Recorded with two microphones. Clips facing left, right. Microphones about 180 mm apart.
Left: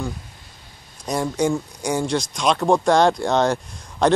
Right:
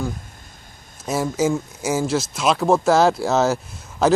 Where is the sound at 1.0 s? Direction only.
5° right (ahead or behind).